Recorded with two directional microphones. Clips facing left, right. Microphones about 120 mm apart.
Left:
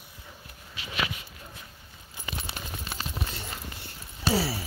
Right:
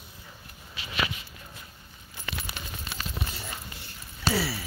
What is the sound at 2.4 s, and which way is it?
Keys jangling, 30° left (ahead or behind).